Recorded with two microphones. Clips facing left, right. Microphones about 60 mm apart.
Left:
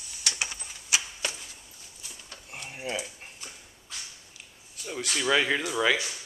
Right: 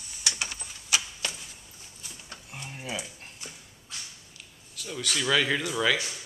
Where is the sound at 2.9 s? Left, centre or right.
Centre.